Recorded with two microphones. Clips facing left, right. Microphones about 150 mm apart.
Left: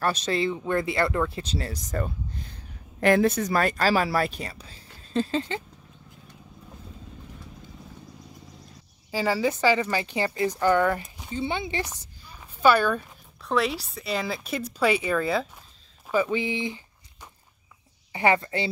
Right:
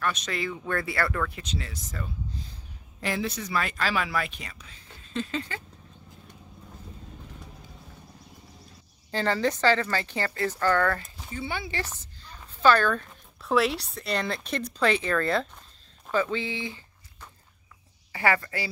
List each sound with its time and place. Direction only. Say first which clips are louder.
0.0 s speech: left 5 dB; 30° left (ahead or behind)
9.1 s speech: left 1 dB; 5° left (ahead or behind)
13.4 s speech: right 1 dB; centre (ahead or behind)
16.1 s a sound: left 3 dB; 15° left (ahead or behind)
18.1 s a woman's voice: left 3 dB; 20° left (ahead or behind)